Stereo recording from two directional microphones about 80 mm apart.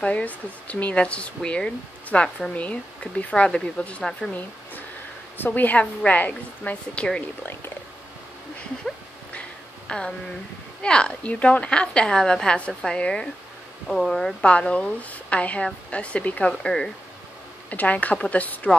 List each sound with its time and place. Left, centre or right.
0.0 s speech: centre
5.4 s a woman's voice: left
9.8 s speech: centre
14.4 s a woman's voice: centre